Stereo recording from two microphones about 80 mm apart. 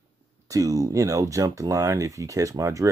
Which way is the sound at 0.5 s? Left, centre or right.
Right.